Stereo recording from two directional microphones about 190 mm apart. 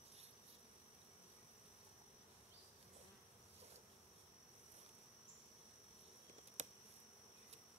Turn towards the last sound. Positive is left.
turn(degrees=-40)  # may be behind; listen again after turning